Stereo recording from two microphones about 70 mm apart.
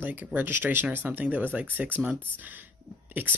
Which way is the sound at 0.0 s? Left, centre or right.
Right.